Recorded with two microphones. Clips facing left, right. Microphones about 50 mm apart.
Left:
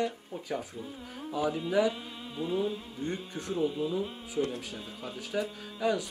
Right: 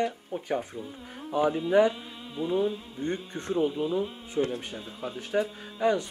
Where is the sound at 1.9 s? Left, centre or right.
Centre.